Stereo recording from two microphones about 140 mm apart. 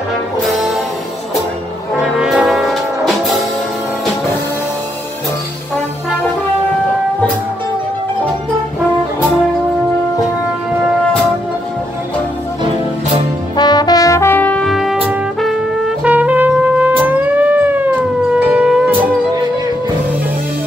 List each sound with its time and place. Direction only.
0.4 s music: centre (ahead or behind)
2.0 s brass instrument: 5° right (ahead or behind)
13.6 s brass instrument: 30° left (ahead or behind); by 14.7 s 10° left (ahead or behind)
14.7 s music: centre (ahead or behind)